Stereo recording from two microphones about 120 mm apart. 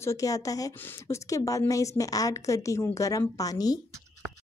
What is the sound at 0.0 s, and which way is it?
A woman's voice, 25° left (ahead or behind).